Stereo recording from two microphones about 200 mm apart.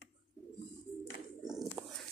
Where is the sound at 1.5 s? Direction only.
Centre (ahead or behind).